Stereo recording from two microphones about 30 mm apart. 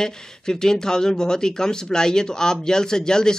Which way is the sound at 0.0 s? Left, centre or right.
Left.